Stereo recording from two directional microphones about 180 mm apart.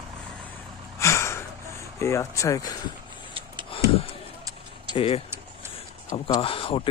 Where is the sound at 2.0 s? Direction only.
15° left (ahead or behind).